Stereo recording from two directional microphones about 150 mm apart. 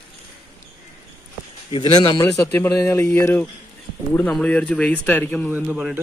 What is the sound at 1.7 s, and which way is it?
Speech, 35° left (ahead or behind).